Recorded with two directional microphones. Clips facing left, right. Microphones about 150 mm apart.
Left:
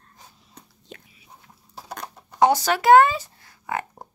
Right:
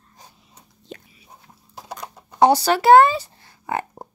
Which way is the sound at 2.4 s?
35° right (ahead or behind).